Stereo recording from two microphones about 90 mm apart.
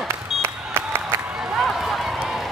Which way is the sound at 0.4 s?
25° right (ahead or behind).